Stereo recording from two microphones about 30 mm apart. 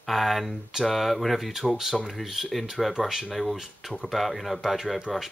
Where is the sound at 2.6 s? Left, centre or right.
Centre.